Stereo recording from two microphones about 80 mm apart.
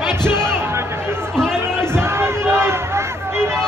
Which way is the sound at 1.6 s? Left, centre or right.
Right.